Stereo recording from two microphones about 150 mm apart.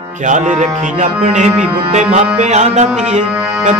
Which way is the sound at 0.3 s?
55° right (ahead or behind).